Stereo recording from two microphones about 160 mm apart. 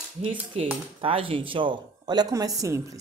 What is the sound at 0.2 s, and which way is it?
A woman's voice, 35° right (ahead or behind).